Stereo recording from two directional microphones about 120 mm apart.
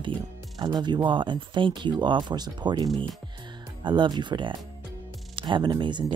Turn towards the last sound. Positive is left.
turn(degrees=-40)  # may be behind; listen again after turning